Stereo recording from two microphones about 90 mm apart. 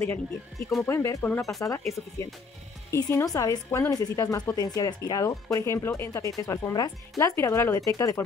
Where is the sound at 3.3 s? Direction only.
40° left (ahead or behind).